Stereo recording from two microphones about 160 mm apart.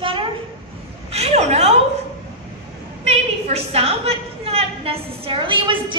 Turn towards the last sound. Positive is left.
turn(degrees=-30)  # may be behind; listen again after turning